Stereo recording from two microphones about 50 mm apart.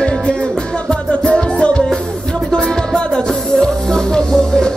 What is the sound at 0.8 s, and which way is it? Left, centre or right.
Music, left.